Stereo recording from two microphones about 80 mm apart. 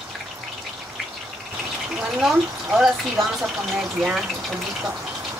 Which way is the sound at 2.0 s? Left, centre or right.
Centre.